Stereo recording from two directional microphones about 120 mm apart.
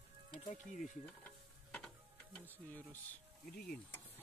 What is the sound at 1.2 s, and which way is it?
Mechanisms, 10° left (ahead or behind).